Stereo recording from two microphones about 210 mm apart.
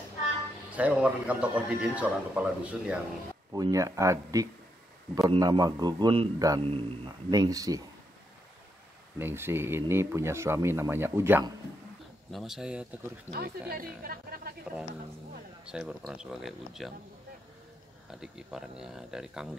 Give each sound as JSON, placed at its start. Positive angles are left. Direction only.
{"t": 0.7, "sound": "a man's voice", "side_deg": -5}
{"t": 3.5, "sound": "a man's voice", "side_deg": -15}
{"t": 9.2, "sound": "a man's voice", "side_deg": -10}
{"t": 12.3, "sound": "speech", "side_deg": 0}
{"t": 13.3, "sound": "a woman's voice", "side_deg": -45}
{"t": 15.6, "sound": "speech", "side_deg": -5}
{"t": 18.1, "sound": "speech", "side_deg": -5}